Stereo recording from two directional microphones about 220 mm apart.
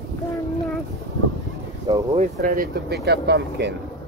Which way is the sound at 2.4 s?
40° right (ahead or behind).